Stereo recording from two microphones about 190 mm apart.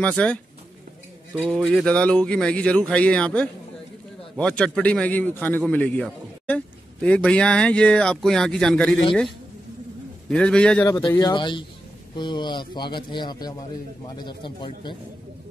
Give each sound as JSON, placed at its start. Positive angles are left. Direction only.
{"t": 0.0, "sound": "a man's voice", "side_deg": 5}
{"t": 10.3, "sound": "a man's voice", "side_deg": 5}
{"t": 10.9, "sound": "a man's voice", "side_deg": 20}